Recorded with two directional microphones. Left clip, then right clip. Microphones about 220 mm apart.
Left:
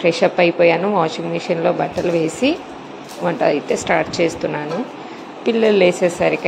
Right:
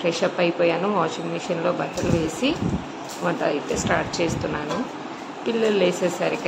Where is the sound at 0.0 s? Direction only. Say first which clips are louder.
Left 7 dB; 15° left (ahead or behind).